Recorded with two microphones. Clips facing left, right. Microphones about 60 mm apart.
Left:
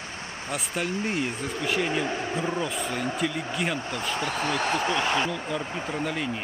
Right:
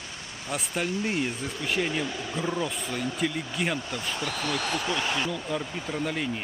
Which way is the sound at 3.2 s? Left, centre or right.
Centre.